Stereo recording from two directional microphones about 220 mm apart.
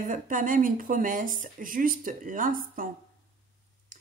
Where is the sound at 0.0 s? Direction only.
35° right (ahead or behind).